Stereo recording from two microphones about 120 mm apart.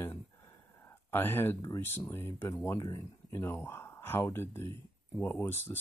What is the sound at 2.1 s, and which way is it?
Speech, 20° left (ahead or behind).